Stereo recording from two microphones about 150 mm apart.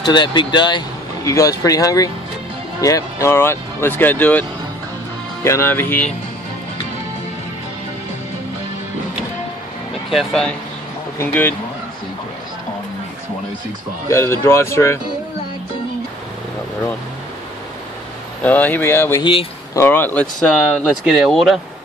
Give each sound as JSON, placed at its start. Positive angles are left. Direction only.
{"t": 0.0, "sound": "speech", "side_deg": 30}
{"t": 10.0, "sound": "speech", "side_deg": 0}
{"t": 11.1, "sound": "speech", "side_deg": 15}
{"t": 14.0, "sound": "speech", "side_deg": 20}
{"t": 18.4, "sound": "speech", "side_deg": 10}
{"t": 20.7, "sound": "speech", "side_deg": 0}